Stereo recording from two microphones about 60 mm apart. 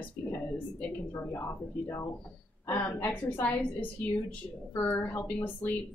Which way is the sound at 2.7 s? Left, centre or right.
Left.